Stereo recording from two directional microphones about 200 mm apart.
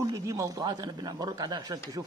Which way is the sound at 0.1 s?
15° right (ahead or behind).